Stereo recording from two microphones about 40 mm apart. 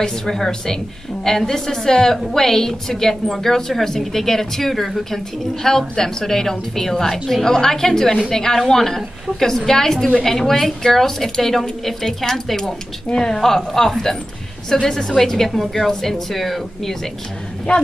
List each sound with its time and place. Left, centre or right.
0.0 s a woman's voice: centre
13.7 s speech: centre
17.7 s a woman's voice: left